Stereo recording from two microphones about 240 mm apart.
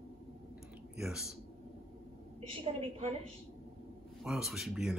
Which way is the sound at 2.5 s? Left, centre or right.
Right.